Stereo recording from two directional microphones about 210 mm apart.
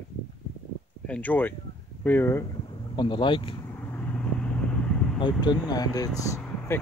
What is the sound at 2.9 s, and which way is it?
Speech, 20° left (ahead or behind).